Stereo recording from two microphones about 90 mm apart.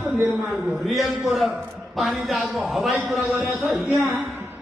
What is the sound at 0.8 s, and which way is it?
A man's voice, centre (ahead or behind).